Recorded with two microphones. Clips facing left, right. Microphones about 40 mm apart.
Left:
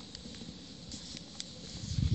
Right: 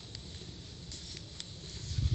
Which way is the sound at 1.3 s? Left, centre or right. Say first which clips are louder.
Left 1 dB; right.